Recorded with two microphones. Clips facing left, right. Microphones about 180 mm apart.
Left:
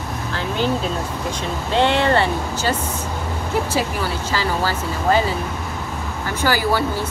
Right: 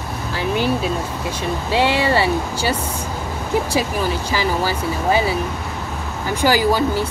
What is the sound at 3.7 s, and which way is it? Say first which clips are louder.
Speech: right 2 dB; 15° right (ahead or behind).